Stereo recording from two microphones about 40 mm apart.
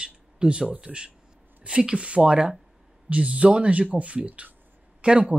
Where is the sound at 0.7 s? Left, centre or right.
Right.